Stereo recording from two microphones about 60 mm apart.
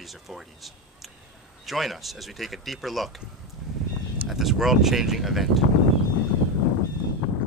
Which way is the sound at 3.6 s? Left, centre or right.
Centre.